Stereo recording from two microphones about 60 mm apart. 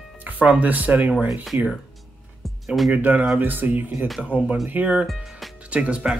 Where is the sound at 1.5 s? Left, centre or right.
Right.